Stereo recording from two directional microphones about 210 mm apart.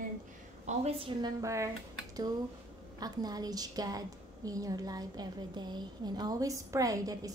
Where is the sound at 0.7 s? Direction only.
30° right (ahead or behind).